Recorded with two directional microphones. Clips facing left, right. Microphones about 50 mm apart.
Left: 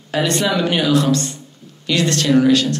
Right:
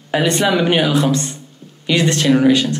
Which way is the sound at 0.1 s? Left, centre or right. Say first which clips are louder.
Right 2 dB; centre.